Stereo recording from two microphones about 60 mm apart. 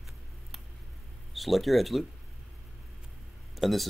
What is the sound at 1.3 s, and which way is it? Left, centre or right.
Speech, centre.